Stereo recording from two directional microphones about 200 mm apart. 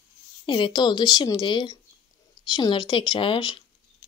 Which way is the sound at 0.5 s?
25° left (ahead or behind).